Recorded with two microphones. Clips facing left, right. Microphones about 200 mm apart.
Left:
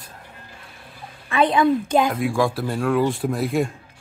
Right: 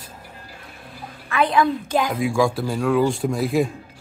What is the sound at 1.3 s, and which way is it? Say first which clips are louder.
Speech: left 2 dB; 25° left (ahead or behind).